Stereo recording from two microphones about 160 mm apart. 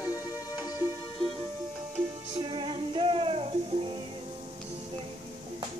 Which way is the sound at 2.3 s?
30° right (ahead or behind).